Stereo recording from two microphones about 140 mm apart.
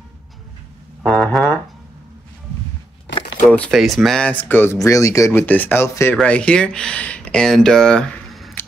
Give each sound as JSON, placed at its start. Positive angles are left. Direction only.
{"t": 1.0, "sound": "music", "side_deg": 5}
{"t": 3.4, "sound": "speech", "side_deg": 10}